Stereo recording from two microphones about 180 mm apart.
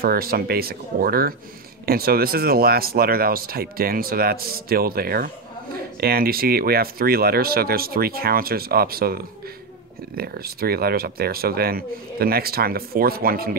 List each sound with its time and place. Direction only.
0.0 s speech: 55° right (ahead or behind)